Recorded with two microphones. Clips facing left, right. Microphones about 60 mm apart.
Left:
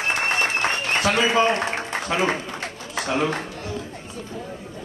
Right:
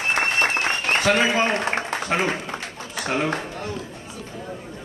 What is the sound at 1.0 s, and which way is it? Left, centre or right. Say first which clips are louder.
Speech: right 1 dB; right.